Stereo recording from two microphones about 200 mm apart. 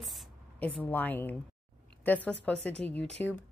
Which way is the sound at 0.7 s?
10° left (ahead or behind).